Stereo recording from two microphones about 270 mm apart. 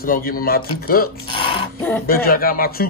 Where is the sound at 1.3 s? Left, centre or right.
Centre.